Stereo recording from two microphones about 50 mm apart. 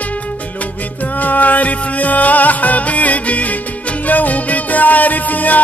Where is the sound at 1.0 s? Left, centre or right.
Left.